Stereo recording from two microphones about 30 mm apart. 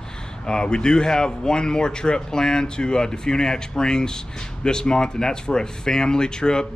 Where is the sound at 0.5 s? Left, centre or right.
Left.